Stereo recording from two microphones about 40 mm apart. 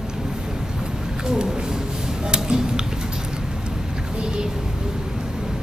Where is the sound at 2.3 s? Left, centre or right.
Right.